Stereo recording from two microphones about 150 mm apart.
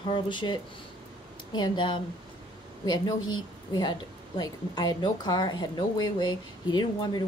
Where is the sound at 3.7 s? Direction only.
25° left (ahead or behind).